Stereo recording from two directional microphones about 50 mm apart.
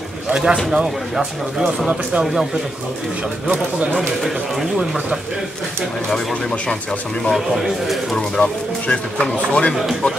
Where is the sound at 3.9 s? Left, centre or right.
Centre.